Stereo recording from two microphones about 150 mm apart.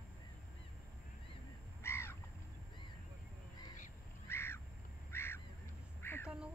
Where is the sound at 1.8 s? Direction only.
15° left (ahead or behind).